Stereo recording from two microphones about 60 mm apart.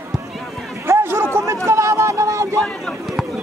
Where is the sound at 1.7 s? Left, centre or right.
Right.